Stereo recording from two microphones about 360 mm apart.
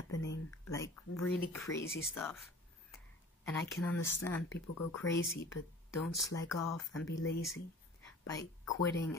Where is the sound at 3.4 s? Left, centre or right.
Centre.